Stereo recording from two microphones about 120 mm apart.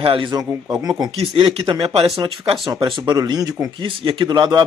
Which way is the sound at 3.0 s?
35° right (ahead or behind).